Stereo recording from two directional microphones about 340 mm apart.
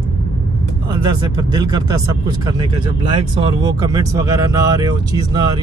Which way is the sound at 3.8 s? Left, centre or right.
Centre.